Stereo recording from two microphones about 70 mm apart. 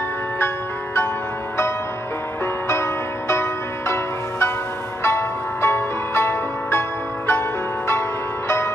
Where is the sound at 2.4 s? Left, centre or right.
Left.